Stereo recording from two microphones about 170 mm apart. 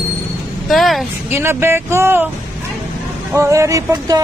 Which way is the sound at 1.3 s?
15° right (ahead or behind).